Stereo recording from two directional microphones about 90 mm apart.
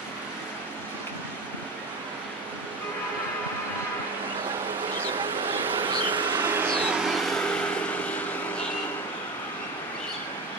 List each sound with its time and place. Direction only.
5.6 s vehicle: 25° right (ahead or behind)
5.9 s vehicle: 60° right (ahead or behind)
6.3 s a sound: 25° right (ahead or behind)
6.8 s vehicle: 10° right (ahead or behind)
7.1 s vehicle: 5° left (ahead or behind)